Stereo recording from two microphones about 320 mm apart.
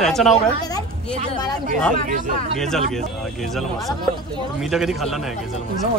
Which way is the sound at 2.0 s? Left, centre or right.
Right.